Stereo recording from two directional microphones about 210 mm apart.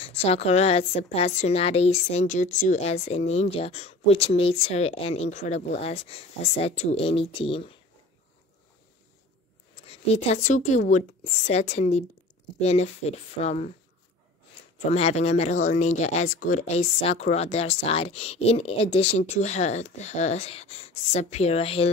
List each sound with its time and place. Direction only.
0.0 s a woman's voice: 30° left (ahead or behind)
9.8 s speech: 30° left (ahead or behind)
14.9 s speech: 30° left (ahead or behind)